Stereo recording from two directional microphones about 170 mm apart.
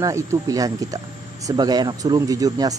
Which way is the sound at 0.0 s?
20° right (ahead or behind).